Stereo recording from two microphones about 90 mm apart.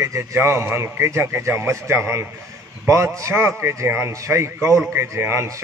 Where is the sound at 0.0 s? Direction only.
35° right (ahead or behind).